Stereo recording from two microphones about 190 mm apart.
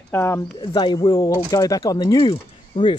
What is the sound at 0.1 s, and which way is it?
Speech, 15° left (ahead or behind).